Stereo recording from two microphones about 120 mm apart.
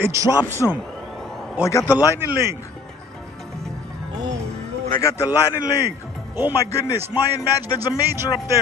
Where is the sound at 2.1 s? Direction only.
20° right (ahead or behind).